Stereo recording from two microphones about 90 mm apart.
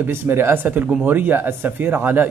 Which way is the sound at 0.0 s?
25° right (ahead or behind).